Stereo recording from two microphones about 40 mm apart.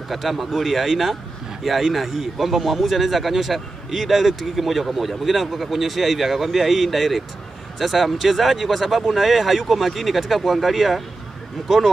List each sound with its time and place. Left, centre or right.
0.1 s speech: centre